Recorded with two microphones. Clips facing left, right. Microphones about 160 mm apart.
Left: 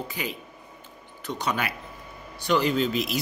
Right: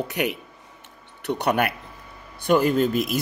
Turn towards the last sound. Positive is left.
turn(degrees=-50)  # may be behind; listen again after turning